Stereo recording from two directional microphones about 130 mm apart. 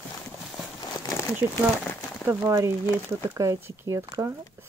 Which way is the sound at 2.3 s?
20° right (ahead or behind).